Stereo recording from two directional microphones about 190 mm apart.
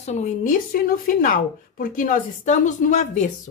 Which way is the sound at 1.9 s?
45° left (ahead or behind).